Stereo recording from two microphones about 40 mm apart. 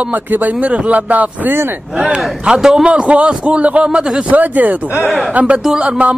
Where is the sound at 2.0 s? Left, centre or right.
Right.